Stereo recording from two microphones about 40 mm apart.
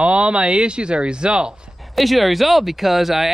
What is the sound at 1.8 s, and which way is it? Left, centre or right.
Speech, centre.